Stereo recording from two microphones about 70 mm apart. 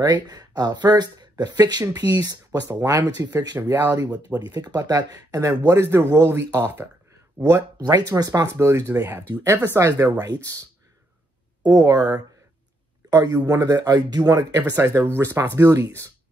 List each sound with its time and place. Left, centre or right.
0.0 s speech: right
2.8 s speech: right
3.7 s speech: right
4.5 s speech: right
4.7 s speech: right
5.6 s speech: right
7.4 s speech: right
8.1 s speech: right
8.5 s speech: right
10.1 s speech: right
11.7 s speech: right
13.5 s speech: right
14.2 s speech: right
15.1 s speech: right